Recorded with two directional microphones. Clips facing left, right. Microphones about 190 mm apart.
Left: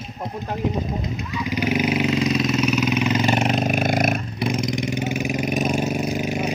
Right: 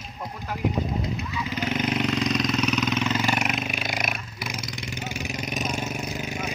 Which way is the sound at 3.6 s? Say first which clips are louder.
Left 10 dB; 50° left (ahead or behind).